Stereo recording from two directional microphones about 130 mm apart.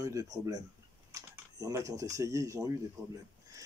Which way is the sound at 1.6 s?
25° right (ahead or behind).